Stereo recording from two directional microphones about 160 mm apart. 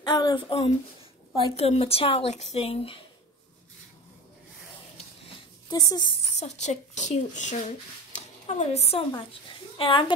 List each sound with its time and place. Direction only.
0.0 s speech: 25° left (ahead or behind)
5.7 s speech: 25° left (ahead or behind)
6.4 s speech: 45° left (ahead or behind)